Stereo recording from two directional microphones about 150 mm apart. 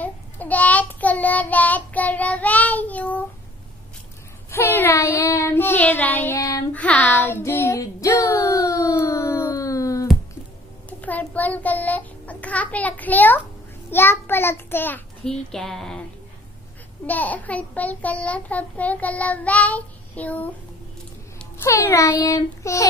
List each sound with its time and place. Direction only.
0.0 s child singing: 10° left (ahead or behind)
4.5 s a child's voice: 15° left (ahead or behind)
6.7 s child singing: 10° left (ahead or behind)
10.9 s child singing: 10° left (ahead or behind)
13.8 s a child's voice: 15° left (ahead or behind)
17.0 s a child's voice: 10° left (ahead or behind)
21.6 s a child's voice: 20° left (ahead or behind)